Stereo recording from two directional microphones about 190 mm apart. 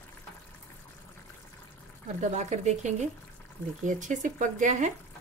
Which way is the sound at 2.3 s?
35° right (ahead or behind).